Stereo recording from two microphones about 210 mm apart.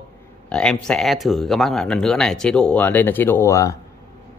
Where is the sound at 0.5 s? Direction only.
5° left (ahead or behind).